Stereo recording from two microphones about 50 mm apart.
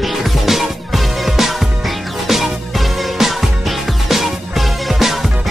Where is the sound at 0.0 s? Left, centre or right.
Centre.